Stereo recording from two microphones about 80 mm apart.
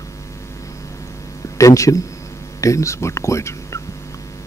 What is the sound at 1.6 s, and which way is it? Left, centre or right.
A man's voice, left.